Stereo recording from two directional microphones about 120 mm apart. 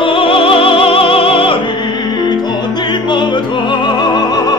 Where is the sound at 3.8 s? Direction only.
35° left (ahead or behind).